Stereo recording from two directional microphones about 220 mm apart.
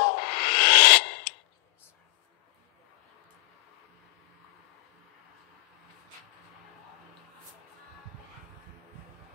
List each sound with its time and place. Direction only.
0.0 s music: 45° left (ahead or behind)